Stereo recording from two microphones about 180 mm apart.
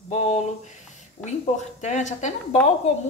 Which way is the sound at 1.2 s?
40° left (ahead or behind).